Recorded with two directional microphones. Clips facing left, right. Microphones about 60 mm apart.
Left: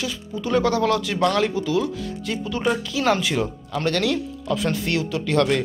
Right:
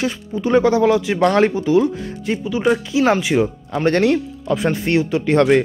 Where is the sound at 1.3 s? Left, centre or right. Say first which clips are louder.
Right 9 dB; right.